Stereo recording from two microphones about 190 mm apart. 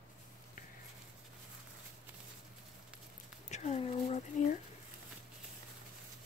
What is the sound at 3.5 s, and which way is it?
Speech, 35° left (ahead or behind).